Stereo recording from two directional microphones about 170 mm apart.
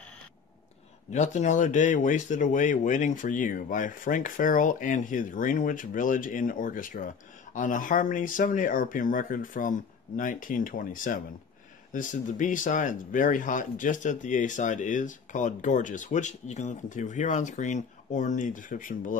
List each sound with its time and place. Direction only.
1.1 s speech: 45° left (ahead or behind)